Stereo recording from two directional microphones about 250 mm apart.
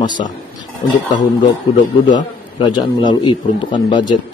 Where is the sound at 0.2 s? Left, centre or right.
Left.